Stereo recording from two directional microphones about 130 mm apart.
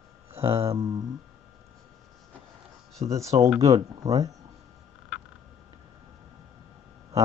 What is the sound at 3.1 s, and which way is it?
Speech, 25° right (ahead or behind).